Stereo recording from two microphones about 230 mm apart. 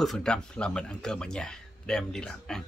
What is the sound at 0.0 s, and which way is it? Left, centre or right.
Speech, centre.